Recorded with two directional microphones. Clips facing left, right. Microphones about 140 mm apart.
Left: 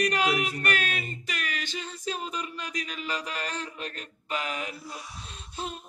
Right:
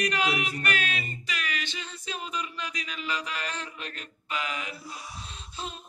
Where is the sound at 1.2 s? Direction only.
45° left (ahead or behind).